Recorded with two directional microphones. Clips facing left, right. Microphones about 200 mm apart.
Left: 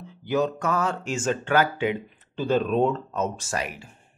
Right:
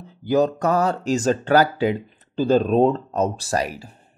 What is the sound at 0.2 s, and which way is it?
Speech, 35° right (ahead or behind).